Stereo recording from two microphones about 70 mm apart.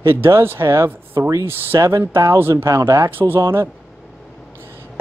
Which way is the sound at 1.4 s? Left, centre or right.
Right.